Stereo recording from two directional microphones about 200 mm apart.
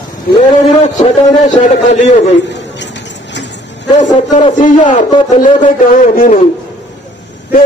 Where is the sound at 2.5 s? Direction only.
60° left (ahead or behind).